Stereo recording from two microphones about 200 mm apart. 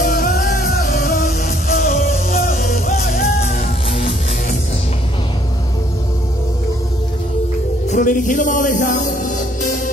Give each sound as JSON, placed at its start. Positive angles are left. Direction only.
{"t": 0.0, "sound": "music", "side_deg": 50}
{"t": 7.9, "sound": "music", "side_deg": 40}